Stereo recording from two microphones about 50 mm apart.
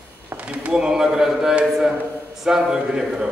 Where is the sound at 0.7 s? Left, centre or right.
Centre.